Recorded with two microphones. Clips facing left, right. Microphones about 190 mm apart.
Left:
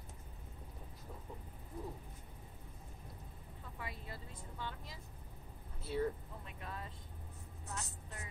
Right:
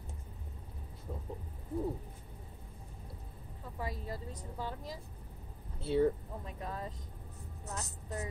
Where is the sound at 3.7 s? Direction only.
40° right (ahead or behind).